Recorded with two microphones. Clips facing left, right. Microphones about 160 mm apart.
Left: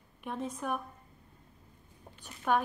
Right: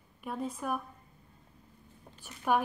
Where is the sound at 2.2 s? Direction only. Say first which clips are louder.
Even; 10° right (ahead or behind).